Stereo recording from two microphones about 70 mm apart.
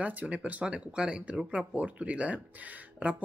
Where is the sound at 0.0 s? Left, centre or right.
Right.